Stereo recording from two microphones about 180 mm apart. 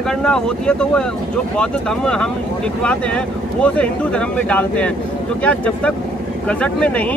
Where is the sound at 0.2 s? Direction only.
5° left (ahead or behind).